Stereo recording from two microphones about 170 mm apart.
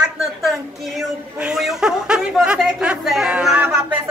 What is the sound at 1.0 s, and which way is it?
Speech, 5° right (ahead or behind).